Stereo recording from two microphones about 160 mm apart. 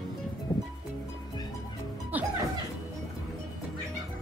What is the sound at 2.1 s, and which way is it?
Music, 10° right (ahead or behind).